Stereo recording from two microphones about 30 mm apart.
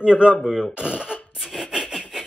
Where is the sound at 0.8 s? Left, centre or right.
Right.